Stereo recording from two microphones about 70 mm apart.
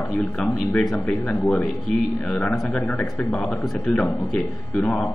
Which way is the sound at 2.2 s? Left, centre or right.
Centre.